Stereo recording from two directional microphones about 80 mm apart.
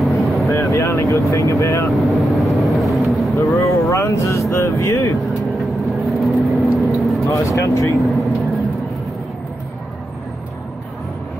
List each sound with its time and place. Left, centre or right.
0.0 s vehicle: centre
0.5 s vehicle: left
1.3 s speech: left
1.9 s vehicle: centre
3.5 s speech: left
5.7 s vehicle: centre
7.2 s speech: left